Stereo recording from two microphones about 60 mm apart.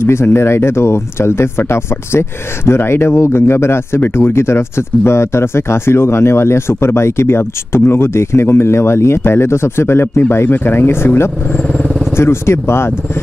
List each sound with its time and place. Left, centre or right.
0.0 s speech: left